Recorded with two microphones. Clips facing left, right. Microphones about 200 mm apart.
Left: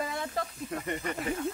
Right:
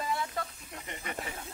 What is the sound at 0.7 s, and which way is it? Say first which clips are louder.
Speech: left 8 dB; 50° left (ahead or behind).